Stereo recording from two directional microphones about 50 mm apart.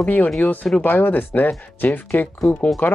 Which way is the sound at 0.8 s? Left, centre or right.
Left.